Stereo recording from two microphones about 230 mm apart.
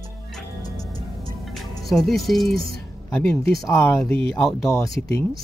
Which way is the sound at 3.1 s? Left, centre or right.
Centre.